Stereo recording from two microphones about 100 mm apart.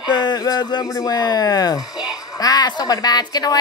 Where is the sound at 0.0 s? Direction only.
45° left (ahead or behind).